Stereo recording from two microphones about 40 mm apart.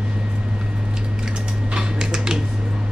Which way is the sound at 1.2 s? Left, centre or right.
Centre.